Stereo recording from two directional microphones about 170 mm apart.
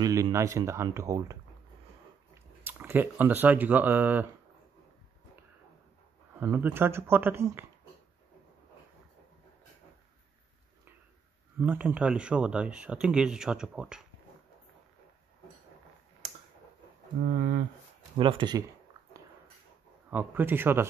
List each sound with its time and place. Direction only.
0.0 s speech: 20° right (ahead or behind)
2.6 s speech: 10° right (ahead or behind)
6.4 s speech: 10° right (ahead or behind)
11.6 s speech: 10° right (ahead or behind)
17.4 s speech: 55° right (ahead or behind)
18.1 s speech: 30° right (ahead or behind)
20.1 s speech: 10° right (ahead or behind)